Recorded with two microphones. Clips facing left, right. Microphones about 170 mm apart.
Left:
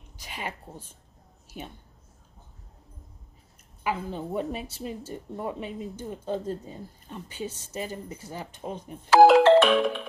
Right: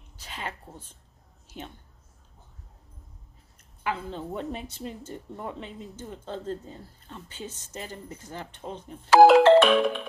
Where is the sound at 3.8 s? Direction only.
10° left (ahead or behind).